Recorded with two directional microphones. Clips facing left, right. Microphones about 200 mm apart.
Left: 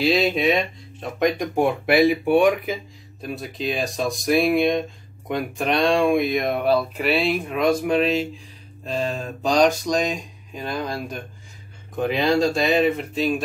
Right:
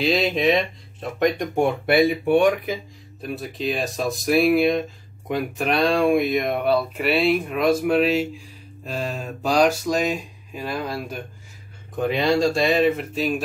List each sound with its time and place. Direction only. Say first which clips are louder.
0.0 s speech: left 1 dB; centre (ahead or behind)